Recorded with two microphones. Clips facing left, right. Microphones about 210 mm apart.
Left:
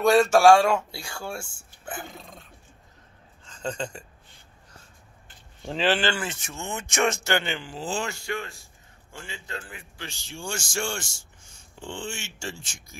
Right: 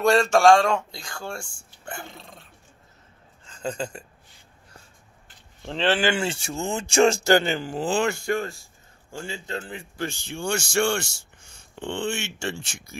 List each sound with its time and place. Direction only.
0.0 s speech: 5° left (ahead or behind)
3.4 s speech: 10° right (ahead or behind)
5.7 s speech: 5° left (ahead or behind)
6.1 s speech: 30° right (ahead or behind)
7.8 s speech: 60° right (ahead or behind); by 8.5 s 45° right (ahead or behind)
9.1 s a man's voice: 30° right (ahead or behind)
9.9 s a man's voice: 50° right (ahead or behind)